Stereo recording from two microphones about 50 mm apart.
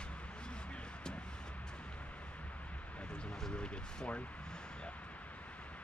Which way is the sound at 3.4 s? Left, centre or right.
Centre.